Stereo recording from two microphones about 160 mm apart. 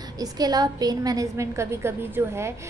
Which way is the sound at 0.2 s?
25° right (ahead or behind).